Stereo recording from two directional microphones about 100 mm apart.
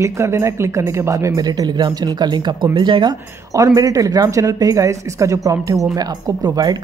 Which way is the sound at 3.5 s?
35° right (ahead or behind).